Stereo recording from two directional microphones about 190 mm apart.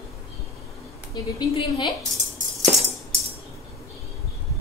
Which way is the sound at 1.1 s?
25° left (ahead or behind).